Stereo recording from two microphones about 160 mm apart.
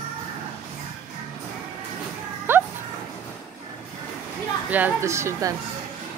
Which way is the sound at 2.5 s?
15° right (ahead or behind).